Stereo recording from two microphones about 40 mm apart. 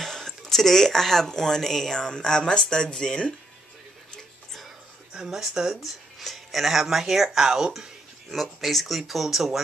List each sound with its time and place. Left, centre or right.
0.0 s speech: centre
5.1 s speech: centre
8.3 s speech: centre